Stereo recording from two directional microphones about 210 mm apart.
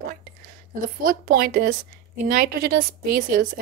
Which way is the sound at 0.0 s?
40° right (ahead or behind).